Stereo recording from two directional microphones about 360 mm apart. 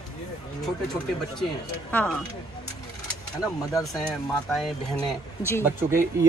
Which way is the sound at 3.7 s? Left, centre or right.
Centre.